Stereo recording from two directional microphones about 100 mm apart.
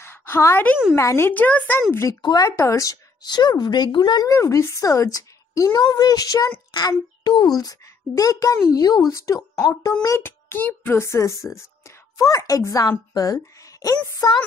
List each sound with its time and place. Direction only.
0.0 s a sound: 20° left (ahead or behind)
0.9 s speech: 25° left (ahead or behind)
2.2 s a woman's voice: 40° left (ahead or behind)
4.4 s a woman's voice: 30° left (ahead or behind)